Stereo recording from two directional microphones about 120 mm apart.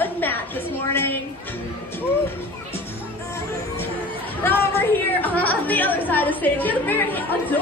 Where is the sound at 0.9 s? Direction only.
20° left (ahead or behind).